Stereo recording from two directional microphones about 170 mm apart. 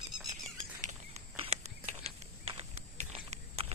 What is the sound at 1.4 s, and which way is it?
Walk, 40° right (ahead or behind).